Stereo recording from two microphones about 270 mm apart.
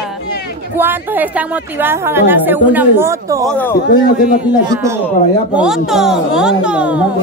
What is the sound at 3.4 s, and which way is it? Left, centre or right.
Speech, centre.